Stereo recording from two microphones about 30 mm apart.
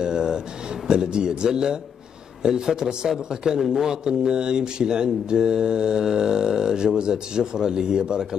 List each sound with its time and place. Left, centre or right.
0.0 s a sound: right
0.8 s speech: right
3.6 s speech: centre
3.9 s speech: right